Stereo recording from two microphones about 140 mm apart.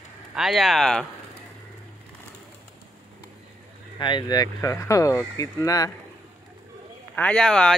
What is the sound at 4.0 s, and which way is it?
Speech, 35° left (ahead or behind).